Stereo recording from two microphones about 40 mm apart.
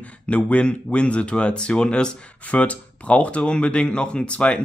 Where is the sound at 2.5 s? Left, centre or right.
Left.